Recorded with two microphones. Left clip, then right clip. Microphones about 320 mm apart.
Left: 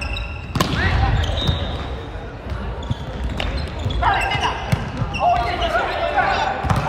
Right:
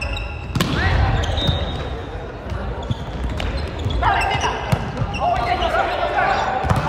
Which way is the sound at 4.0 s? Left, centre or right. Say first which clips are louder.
Even; centre.